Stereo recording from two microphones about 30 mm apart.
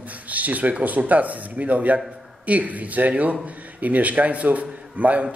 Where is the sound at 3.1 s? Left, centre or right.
Right.